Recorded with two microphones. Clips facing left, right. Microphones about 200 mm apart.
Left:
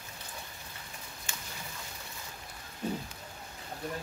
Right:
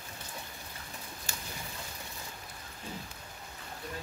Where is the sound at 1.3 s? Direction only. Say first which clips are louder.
Even; 35° right (ahead or behind).